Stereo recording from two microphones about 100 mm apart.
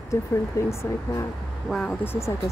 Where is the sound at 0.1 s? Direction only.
30° left (ahead or behind).